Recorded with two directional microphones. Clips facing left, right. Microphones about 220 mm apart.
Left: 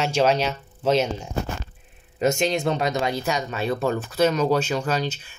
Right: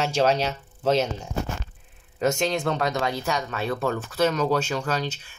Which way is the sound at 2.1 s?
20° left (ahead or behind).